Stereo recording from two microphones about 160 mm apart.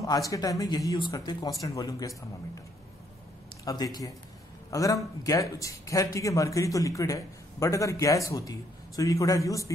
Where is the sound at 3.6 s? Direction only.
25° left (ahead or behind).